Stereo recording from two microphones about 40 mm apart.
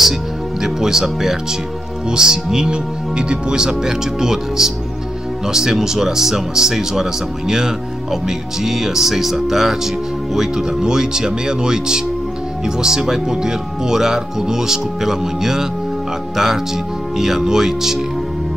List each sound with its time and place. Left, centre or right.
0.6 s speech: centre